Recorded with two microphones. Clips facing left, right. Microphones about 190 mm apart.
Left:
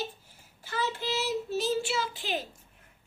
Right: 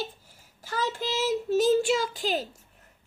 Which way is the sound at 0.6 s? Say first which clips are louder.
Right 2 dB; 45° right (ahead or behind).